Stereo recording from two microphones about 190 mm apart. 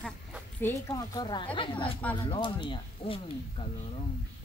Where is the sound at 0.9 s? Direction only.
20° left (ahead or behind).